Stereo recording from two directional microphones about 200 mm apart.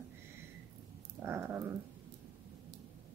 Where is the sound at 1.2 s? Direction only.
10° right (ahead or behind).